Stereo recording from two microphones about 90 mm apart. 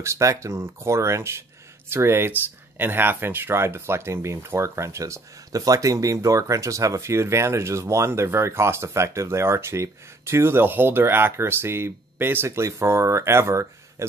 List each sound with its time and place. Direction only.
0.0 s speech: 35° right (ahead or behind)